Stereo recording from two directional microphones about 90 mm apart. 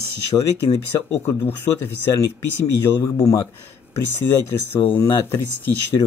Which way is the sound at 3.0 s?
40° left (ahead or behind).